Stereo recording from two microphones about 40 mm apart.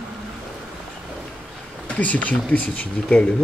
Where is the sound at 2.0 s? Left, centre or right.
Left.